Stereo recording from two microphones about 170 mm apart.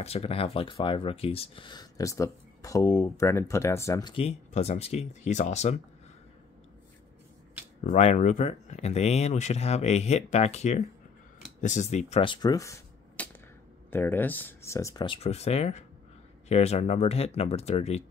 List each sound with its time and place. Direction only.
0.0 s speech: 35° left (ahead or behind); by 4.1 s 15° left (ahead or behind)
4.1 s speech: 35° left (ahead or behind)
7.8 s speech: 45° left (ahead or behind); by 15.0 s 20° left (ahead or behind)
15.0 s speech: 35° left (ahead or behind)